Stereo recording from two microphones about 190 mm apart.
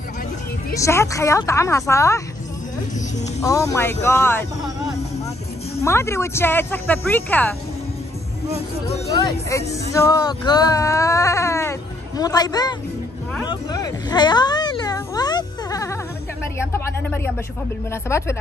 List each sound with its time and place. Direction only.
0.7 s speech: 15° left (ahead or behind)
3.3 s speech: 15° left (ahead or behind)
5.8 s speech: 15° left (ahead or behind)
8.8 s speech: 35° left (ahead or behind)
9.1 s speech: 20° left (ahead or behind)
13.5 s a sound: 20° left (ahead or behind)
16.5 s speech: 10° left (ahead or behind)